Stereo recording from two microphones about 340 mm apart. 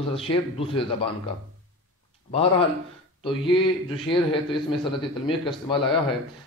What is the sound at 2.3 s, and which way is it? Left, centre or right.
A man's voice, centre.